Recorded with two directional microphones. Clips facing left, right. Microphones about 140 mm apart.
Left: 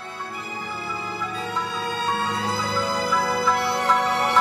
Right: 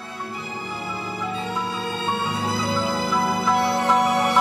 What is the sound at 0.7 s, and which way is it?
Music, 20° right (ahead or behind).